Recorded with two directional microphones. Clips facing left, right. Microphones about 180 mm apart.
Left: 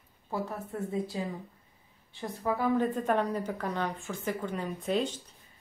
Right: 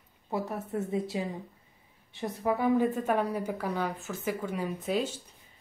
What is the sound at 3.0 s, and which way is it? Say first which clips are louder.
A woman's voice: even; 5° right (ahead or behind).